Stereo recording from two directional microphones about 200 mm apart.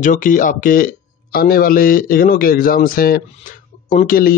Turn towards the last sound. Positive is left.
turn(degrees=45)  # may be behind; listen again after turning